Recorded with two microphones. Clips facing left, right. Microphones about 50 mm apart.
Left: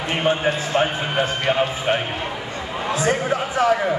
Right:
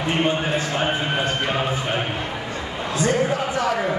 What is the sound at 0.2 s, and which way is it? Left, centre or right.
Speech, centre.